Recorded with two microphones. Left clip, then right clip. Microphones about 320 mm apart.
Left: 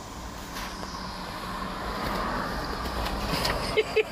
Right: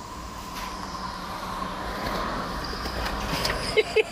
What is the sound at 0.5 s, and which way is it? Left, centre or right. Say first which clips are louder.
Vehicle: right 2 dB; centre.